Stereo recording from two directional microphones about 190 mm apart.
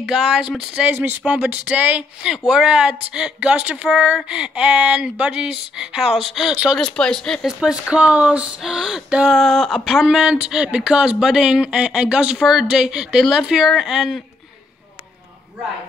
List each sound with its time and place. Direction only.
0.0 s speech: centre (ahead or behind)